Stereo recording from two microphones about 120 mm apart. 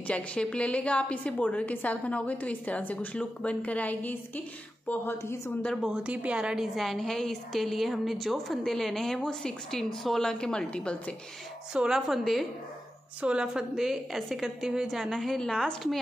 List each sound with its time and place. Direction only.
0.0 s a woman's voice: 10° left (ahead or behind)
5.6 s a woman's voice: centre (ahead or behind)
11.7 s a woman's voice: 5° right (ahead or behind)